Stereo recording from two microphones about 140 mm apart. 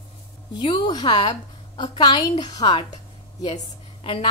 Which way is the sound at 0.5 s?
30° left (ahead or behind).